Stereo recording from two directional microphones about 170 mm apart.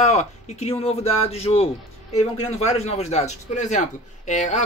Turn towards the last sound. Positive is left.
turn(degrees=45)  # may be behind; listen again after turning